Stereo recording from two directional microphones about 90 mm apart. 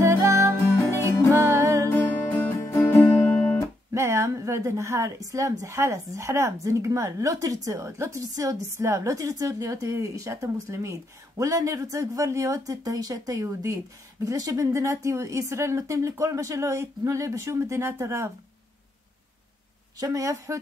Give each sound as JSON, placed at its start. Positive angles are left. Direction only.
{"t": 0.0, "sound": "music", "side_deg": -30}
{"t": 1.9, "sound": "music", "side_deg": 25}
{"t": 3.9, "sound": "a woman's voice", "side_deg": -30}
{"t": 20.0, "sound": "a woman's voice", "side_deg": -40}